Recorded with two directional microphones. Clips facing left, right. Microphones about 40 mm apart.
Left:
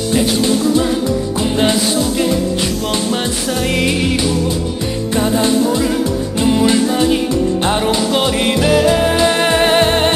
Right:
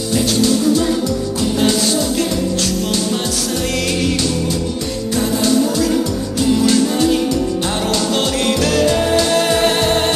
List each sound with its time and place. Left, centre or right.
0.1 s music: left
5.4 s music: left